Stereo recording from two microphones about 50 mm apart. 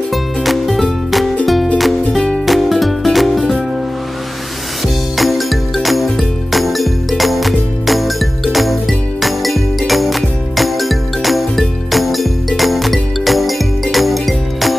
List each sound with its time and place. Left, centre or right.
0.1 s music: centre
2.1 s music: centre
2.4 s music: centre
5.1 s music: centre
9.2 s jingle bell: centre
13.9 s music: centre